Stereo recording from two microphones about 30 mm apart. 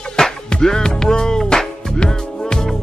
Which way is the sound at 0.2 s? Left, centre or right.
Centre.